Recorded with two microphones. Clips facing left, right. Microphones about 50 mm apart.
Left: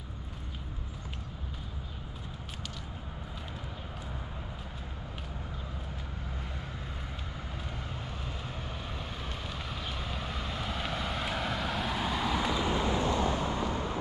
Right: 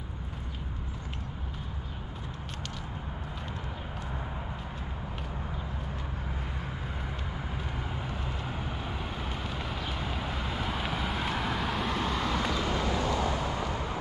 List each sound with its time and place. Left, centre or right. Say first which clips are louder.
7.9 s vehicle: right 4 dB; centre
12.8 s vehicle: even; left